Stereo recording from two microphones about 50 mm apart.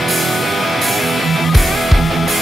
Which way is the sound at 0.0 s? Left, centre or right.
Centre.